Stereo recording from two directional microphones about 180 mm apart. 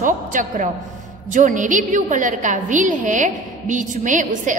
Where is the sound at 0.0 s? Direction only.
45° right (ahead or behind).